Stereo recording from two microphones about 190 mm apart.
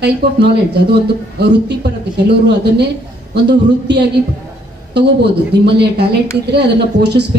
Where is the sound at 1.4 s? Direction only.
60° right (ahead or behind).